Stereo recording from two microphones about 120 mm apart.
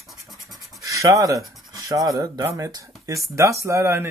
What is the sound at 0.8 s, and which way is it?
Speech, 25° right (ahead or behind).